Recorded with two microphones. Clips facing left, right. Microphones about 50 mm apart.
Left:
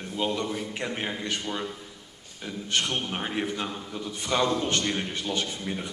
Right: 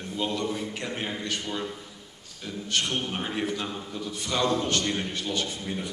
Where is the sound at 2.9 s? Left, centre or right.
Centre.